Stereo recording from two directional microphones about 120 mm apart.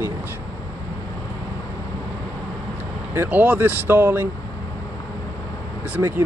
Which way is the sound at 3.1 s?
15° right (ahead or behind).